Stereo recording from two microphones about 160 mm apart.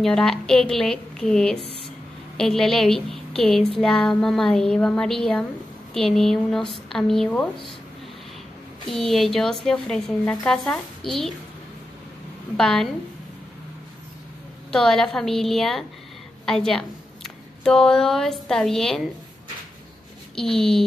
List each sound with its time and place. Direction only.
0.0 s a woman's voice: 5° left (ahead or behind)
8.8 s a woman's voice: centre (ahead or behind)
12.5 s a woman's voice: 5° left (ahead or behind)
14.7 s a woman's voice: 5° left (ahead or behind)
20.3 s a woman's voice: 5° left (ahead or behind)